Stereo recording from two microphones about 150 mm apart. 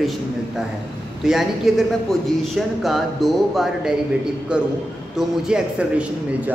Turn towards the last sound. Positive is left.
turn(degrees=-10)  # may be behind; listen again after turning